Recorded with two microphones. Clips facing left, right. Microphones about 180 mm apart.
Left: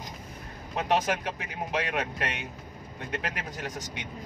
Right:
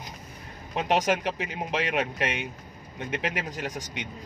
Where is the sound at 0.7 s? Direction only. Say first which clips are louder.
Right 2 dB; 20° right (ahead or behind).